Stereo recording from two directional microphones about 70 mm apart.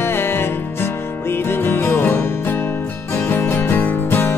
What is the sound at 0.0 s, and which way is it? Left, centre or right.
Music, left.